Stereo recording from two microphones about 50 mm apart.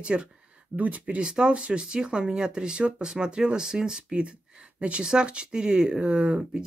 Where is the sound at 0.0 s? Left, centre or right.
Centre.